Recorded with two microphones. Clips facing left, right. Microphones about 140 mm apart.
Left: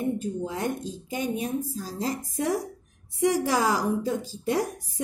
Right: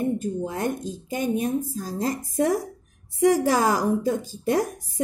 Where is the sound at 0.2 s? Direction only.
45° right (ahead or behind).